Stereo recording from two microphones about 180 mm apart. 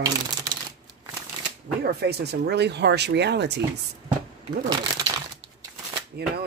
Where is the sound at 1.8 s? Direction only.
65° right (ahead or behind).